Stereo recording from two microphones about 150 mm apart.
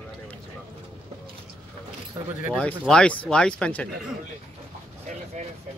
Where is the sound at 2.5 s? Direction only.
5° left (ahead or behind).